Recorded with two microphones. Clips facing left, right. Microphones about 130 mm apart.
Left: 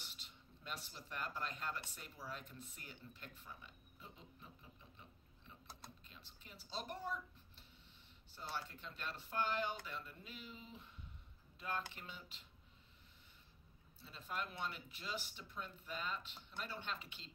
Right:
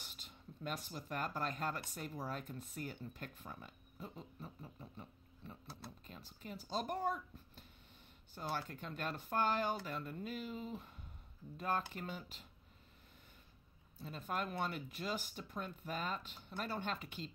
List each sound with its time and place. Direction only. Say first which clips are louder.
0.0 s speech: right 4 dB; 45° right (ahead or behind)
6.0 s speech: right 11 dB; 45° right (ahead or behind)
13.9 s speech: right 5 dB; 50° right (ahead or behind)